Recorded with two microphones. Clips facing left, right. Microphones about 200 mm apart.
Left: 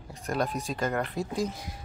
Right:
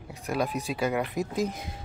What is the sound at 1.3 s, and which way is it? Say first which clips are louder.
Speech: right 1 dB; 20° right (ahead or behind).